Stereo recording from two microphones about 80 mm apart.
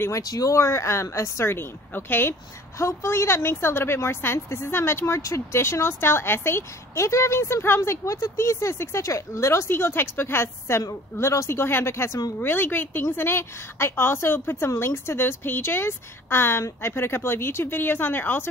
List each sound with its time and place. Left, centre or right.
0.2 s a woman's voice: left